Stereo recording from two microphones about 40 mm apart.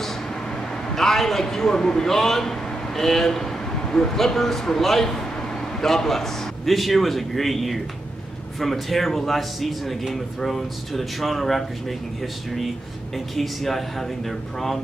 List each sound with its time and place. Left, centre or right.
0.9 s a man's voice: centre
13.4 s a man's voice: centre